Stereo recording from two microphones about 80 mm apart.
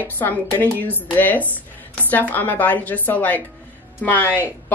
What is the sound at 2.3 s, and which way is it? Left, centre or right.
A woman's voice, left.